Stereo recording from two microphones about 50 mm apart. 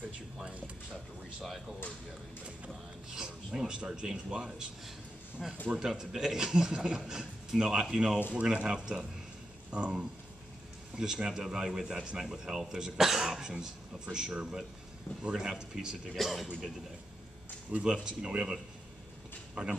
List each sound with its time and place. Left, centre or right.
3.2 s music: centre
4.1 s speech: centre
5.7 s speech: centre
11.0 s speech: centre
16.2 s speech: centre
17.7 s speech: right